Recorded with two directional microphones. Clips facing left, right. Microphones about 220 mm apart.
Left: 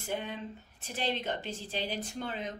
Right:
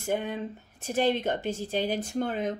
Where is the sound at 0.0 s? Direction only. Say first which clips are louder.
Right 7 dB; 45° right (ahead or behind).